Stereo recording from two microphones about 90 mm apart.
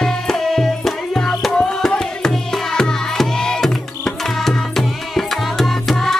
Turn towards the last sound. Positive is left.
turn(degrees=0)  # may be behind; listen again after turning